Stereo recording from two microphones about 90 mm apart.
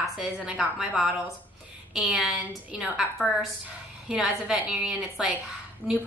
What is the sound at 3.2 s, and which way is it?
Speech, 20° left (ahead or behind).